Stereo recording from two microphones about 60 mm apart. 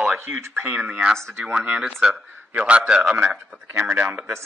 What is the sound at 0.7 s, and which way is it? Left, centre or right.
Speech, centre.